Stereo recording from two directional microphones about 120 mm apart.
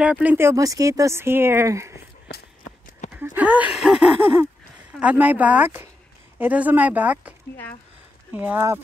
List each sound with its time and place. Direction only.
0.0 s speech: 10° right (ahead or behind)
3.1 s speech: 10° right (ahead or behind)